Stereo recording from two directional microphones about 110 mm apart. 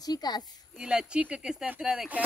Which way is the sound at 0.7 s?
5° right (ahead or behind).